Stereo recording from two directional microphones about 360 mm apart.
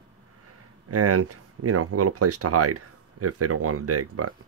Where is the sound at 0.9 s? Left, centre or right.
Right.